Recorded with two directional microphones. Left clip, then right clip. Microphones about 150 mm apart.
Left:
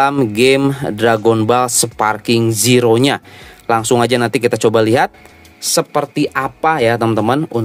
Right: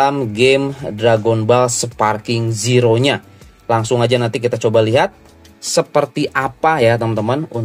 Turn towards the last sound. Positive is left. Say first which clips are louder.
# left 4 dB
turn(degrees=45)  # may be behind; listen again after turning